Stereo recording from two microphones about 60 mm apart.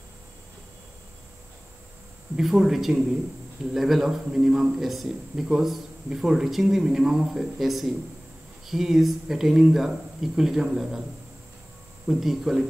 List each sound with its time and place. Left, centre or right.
2.3 s a man's voice: centre
12.1 s speech: centre